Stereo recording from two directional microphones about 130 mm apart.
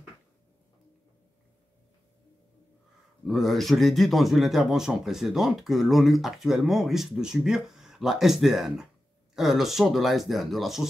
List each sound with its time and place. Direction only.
3.3 s a man's voice: centre (ahead or behind)